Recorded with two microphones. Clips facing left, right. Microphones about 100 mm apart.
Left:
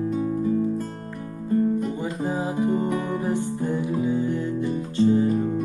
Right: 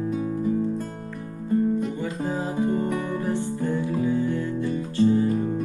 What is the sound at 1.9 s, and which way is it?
Music, 15° left (ahead or behind).